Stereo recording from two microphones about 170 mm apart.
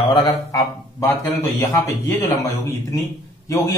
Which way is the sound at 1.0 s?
15° left (ahead or behind).